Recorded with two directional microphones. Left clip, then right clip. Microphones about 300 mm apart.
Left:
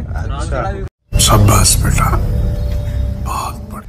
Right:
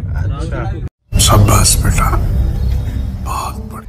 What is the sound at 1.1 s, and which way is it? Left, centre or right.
Music, centre.